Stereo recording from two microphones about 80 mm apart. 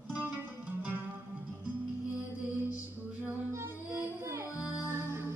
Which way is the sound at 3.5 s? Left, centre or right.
Right.